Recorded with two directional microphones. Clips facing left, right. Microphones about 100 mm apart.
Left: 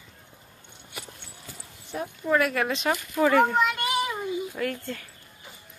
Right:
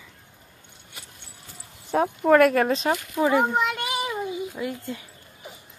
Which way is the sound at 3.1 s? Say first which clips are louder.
Left 2 dB; 20° right (ahead or behind).